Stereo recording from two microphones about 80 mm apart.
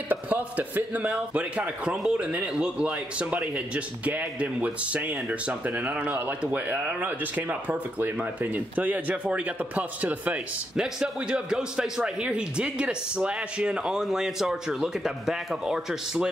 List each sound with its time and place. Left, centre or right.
0.1 s speech: right